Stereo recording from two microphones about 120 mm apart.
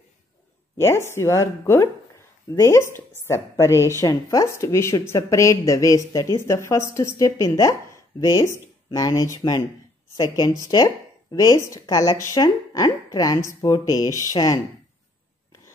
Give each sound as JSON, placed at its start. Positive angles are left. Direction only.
{"t": 0.7, "sound": "a woman's voice", "side_deg": 20}